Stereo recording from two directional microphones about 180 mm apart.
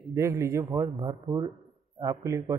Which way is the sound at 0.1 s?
15° right (ahead or behind).